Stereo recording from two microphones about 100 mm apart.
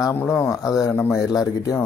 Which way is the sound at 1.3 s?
35° left (ahead or behind).